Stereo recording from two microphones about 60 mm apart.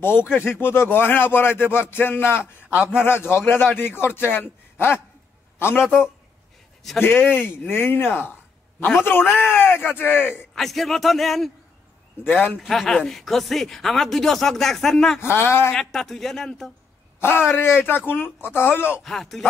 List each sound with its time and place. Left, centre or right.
0.5 s speech: left
2.7 s a man's voice: centre
3.0 s speech: left
5.9 s a man's voice: centre
7.0 s speech: left
10.5 s speech: centre
12.2 s speech: left
12.6 s speech: centre
15.1 s speech: left
15.7 s speech: centre
17.2 s speech: left
19.0 s speech: centre